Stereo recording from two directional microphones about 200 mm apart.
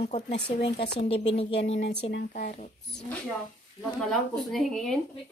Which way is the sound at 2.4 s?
35° left (ahead or behind).